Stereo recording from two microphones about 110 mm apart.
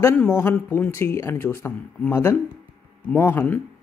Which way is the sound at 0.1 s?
20° left (ahead or behind).